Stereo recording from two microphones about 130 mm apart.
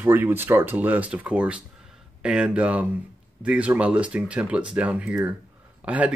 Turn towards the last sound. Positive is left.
turn(degrees=-10)  # may be behind; listen again after turning